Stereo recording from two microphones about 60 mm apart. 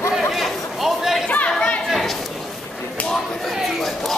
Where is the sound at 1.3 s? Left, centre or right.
Left.